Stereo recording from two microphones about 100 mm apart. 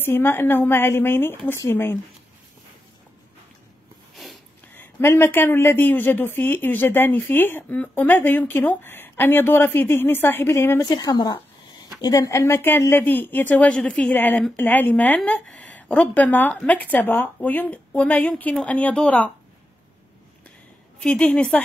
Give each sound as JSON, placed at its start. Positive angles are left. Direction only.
{"t": 0.0, "sound": "speech", "side_deg": 20}
{"t": 4.7, "sound": "speech", "side_deg": 25}
{"t": 10.9, "sound": "a woman's voice", "side_deg": 40}
{"t": 21.0, "sound": "a woman's voice", "side_deg": 5}